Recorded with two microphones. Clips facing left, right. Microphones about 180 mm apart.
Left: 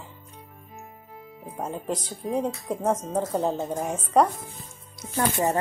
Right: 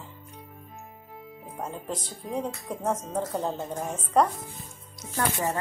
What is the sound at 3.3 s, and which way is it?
Speech, 20° left (ahead or behind).